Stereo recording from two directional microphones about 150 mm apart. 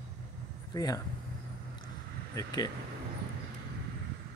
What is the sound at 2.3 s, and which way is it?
Speech, 25° left (ahead or behind).